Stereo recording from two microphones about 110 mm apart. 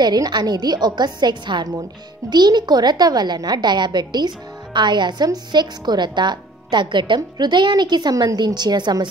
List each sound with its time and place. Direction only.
0.0 s a woman's voice: 40° right (ahead or behind)